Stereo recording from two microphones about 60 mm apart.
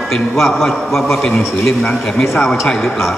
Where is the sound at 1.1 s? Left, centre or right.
Centre.